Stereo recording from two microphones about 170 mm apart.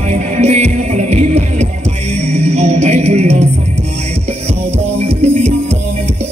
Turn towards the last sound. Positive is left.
turn(degrees=-40)  # may be behind; listen again after turning